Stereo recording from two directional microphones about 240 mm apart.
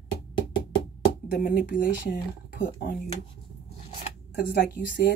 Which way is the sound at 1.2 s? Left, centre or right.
Left.